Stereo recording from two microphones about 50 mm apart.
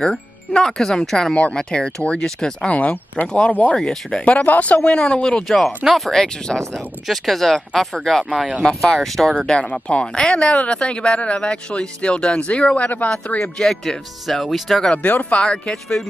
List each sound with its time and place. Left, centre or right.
0.0 s speech: centre
2.7 s speech: left
5.9 s speech: centre
9.0 s speech: centre
9.7 s speech: left
13.4 s speech: centre
14.9 s speech: left
15.4 s speech: centre